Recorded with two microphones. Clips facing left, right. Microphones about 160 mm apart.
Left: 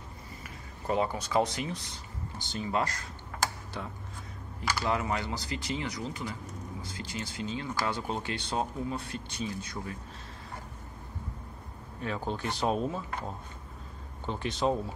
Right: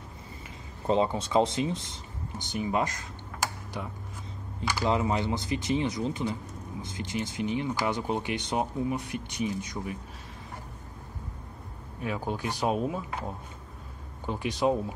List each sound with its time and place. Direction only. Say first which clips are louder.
0.8 s speech: right 4 dB; 25° right (ahead or behind)
12.0 s speech: right 2 dB; 10° right (ahead or behind)
14.2 s speech: right 3 dB; 10° right (ahead or behind)